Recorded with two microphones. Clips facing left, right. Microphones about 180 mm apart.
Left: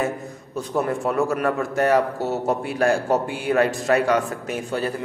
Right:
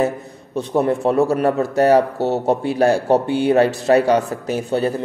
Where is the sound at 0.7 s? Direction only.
35° right (ahead or behind).